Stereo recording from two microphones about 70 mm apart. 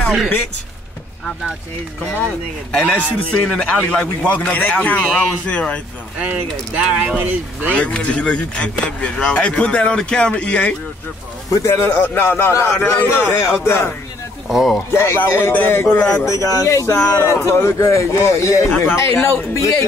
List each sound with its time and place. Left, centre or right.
0.0 s speech: centre
2.7 s speech: centre
3.3 s a man's voice: centre
6.7 s speech: centre
7.7 s speech: centre
11.5 s a man's voice: left
12.8 s a man's voice: left
14.5 s speech: centre
14.9 s a man's voice: left
16.3 s speech: left